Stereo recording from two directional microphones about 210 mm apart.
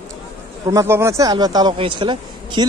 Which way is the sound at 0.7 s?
15° right (ahead or behind).